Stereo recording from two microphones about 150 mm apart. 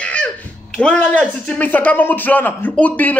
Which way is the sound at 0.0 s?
10° left (ahead or behind).